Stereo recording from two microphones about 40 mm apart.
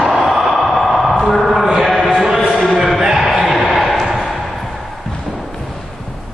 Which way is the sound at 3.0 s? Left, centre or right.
Centre.